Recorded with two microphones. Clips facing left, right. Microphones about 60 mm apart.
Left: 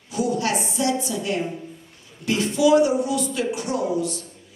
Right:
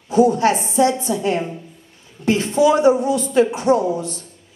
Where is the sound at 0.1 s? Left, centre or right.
Right.